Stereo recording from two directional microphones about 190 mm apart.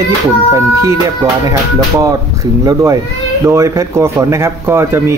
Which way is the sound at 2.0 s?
15° right (ahead or behind).